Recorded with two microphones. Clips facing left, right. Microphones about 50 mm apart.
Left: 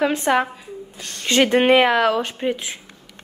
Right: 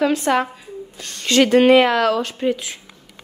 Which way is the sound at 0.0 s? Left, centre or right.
Left.